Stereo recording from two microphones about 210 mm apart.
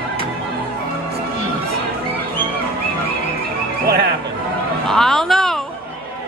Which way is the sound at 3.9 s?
50° right (ahead or behind).